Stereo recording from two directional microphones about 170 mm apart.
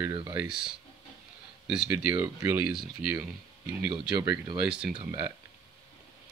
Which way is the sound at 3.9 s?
25° right (ahead or behind).